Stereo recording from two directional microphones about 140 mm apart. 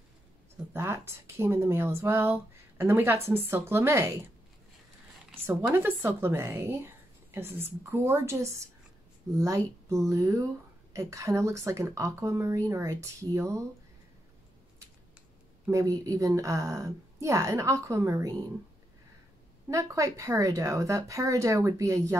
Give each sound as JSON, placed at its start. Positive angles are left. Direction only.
{"t": 0.7, "sound": "speech", "side_deg": -20}
{"t": 5.5, "sound": "a woman's voice", "side_deg": -15}
{"t": 15.6, "sound": "a woman's voice", "side_deg": -25}
{"t": 19.7, "sound": "a woman's voice", "side_deg": -20}